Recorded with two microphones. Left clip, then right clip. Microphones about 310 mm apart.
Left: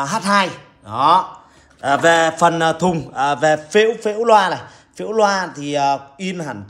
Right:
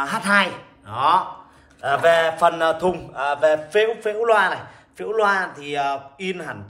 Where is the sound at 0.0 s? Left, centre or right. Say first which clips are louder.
Left 2 dB; centre.